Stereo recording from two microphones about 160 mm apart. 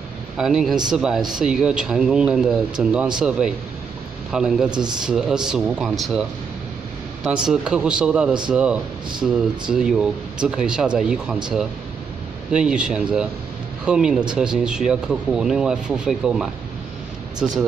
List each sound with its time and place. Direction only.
0.4 s speech: 5° right (ahead or behind)
4.6 s speech: 25° right (ahead or behind)
5.0 s speech: 5° right (ahead or behind)
7.2 s speech: 5° right (ahead or behind)
12.5 s speech: 5° right (ahead or behind)